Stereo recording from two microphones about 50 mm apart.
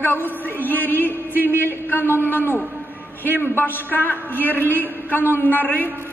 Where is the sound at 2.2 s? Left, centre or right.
Left.